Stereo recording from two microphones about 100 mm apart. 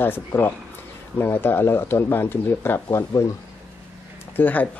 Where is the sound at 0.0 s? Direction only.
20° left (ahead or behind).